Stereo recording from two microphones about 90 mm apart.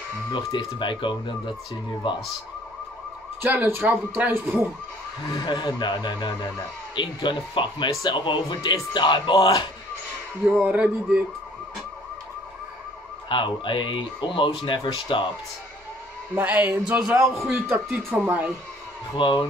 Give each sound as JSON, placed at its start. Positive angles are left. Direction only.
{"t": 0.3, "sound": "speech", "side_deg": 75}
{"t": 3.4, "sound": "a man's voice", "side_deg": -20}
{"t": 5.4, "sound": "speech", "side_deg": 55}
{"t": 10.5, "sound": "speech", "side_deg": -15}
{"t": 13.3, "sound": "speech", "side_deg": 65}
{"t": 16.3, "sound": "a man's voice", "side_deg": -20}
{"t": 19.1, "sound": "speech", "side_deg": 60}